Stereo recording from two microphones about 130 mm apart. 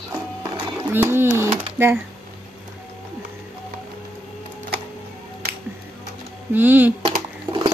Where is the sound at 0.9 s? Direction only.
15° right (ahead or behind).